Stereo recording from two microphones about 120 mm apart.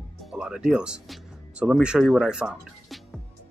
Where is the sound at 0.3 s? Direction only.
5° right (ahead or behind).